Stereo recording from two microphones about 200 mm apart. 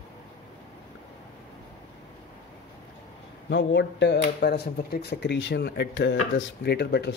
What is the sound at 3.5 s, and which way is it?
Speech, 60° left (ahead or behind).